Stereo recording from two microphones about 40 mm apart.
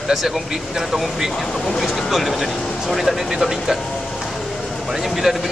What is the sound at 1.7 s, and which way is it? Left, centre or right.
Speech, centre.